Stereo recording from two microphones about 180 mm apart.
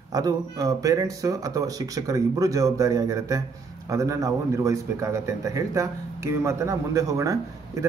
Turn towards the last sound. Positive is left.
turn(degrees=-15)  # may be behind; listen again after turning